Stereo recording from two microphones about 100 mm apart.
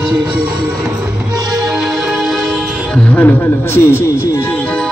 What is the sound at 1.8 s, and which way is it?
Music, 5° right (ahead or behind).